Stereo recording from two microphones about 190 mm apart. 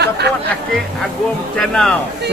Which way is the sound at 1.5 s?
5° left (ahead or behind).